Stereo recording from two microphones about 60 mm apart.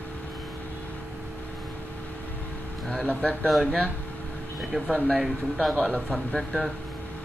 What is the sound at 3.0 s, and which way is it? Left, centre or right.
Speech, left.